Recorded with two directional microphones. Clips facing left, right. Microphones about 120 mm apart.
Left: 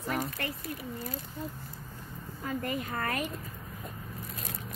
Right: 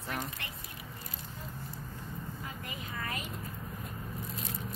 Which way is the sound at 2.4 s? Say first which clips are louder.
Left 9 dB; 50° left (ahead or behind).